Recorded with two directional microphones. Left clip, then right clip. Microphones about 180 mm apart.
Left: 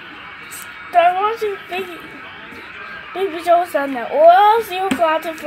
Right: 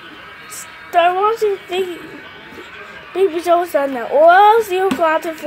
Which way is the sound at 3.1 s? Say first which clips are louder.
Right 1 dB; 20° right (ahead or behind).